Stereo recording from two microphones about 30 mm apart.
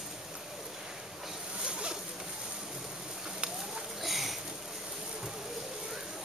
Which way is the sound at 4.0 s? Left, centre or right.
Centre.